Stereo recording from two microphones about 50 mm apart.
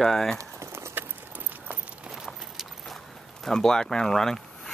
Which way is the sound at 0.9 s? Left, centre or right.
Right.